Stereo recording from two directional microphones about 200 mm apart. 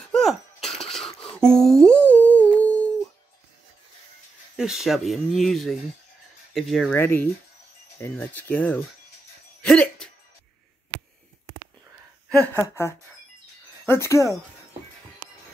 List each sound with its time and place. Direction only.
0.1 s a sound: centre (ahead or behind)
1.3 s humming: 5° left (ahead or behind)
4.6 s speech: centre (ahead or behind)
7.0 s speech: 10° left (ahead or behind)
9.6 s music: 5° left (ahead or behind)
12.5 s speech: 15° left (ahead or behind)